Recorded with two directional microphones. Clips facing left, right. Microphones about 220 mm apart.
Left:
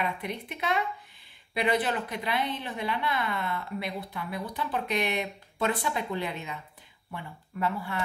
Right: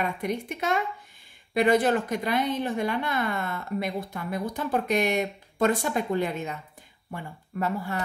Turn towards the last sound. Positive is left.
turn(degrees=-45)  # may be behind; listen again after turning